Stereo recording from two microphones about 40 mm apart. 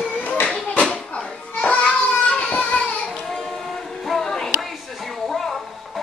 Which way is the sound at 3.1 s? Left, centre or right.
Centre.